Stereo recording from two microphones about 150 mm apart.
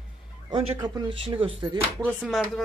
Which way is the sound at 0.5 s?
30° right (ahead or behind).